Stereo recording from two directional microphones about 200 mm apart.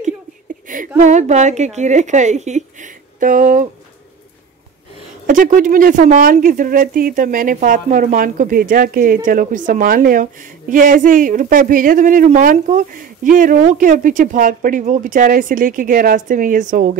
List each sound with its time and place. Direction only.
0.7 s a woman's voice: 40° right (ahead or behind)
5.2 s speech: 40° right (ahead or behind)